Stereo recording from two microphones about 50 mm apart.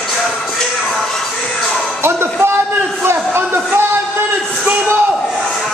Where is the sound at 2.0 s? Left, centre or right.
Right.